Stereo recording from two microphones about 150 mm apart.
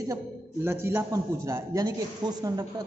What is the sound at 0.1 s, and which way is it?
A man's voice, 15° right (ahead or behind).